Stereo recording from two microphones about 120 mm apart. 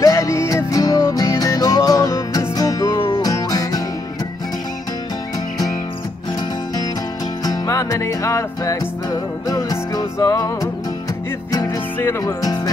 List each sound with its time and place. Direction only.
0.0 s music: 25° left (ahead or behind)
7.4 s music: 30° left (ahead or behind)